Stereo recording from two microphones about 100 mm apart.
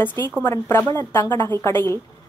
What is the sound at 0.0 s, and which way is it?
A woman's voice, 20° left (ahead or behind).